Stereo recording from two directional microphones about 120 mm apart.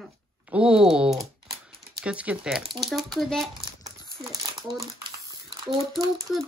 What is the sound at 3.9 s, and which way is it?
Crumpling, 30° right (ahead or behind).